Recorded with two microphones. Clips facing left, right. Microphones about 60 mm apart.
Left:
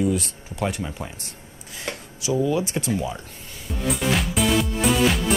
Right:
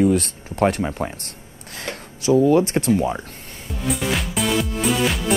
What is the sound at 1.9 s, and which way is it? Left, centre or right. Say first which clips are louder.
Speech: right 8 dB; right.